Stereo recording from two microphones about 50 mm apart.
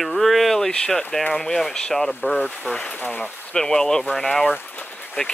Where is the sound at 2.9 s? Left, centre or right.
Left.